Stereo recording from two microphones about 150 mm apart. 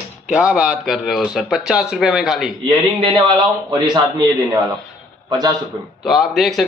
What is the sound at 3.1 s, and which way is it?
Speech, 25° right (ahead or behind).